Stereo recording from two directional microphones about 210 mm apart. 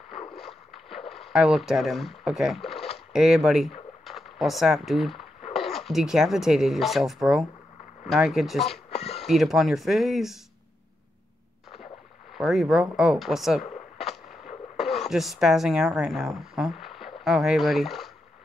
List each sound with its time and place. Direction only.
0.3 s rowboat: centre (ahead or behind)
3.1 s speech: 5° right (ahead or behind)
8.9 s a sound: 30° left (ahead or behind)
9.2 s speech: centre (ahead or behind)
12.4 s speech: centre (ahead or behind)
14.8 s speech: centre (ahead or behind)